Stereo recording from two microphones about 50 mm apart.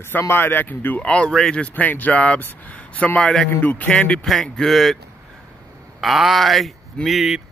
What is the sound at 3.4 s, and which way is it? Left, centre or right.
Speech, left.